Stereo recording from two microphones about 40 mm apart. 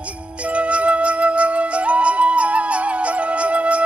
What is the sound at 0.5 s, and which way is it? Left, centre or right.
Flute, right.